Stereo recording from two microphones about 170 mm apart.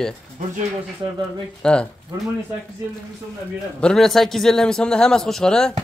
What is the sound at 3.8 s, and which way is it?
Speech, 5° left (ahead or behind).